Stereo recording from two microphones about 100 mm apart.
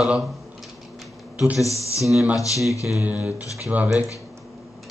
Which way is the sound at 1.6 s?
30° left (ahead or behind).